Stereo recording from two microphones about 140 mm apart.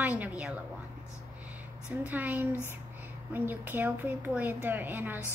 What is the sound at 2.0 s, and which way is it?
Speech, 10° right (ahead or behind).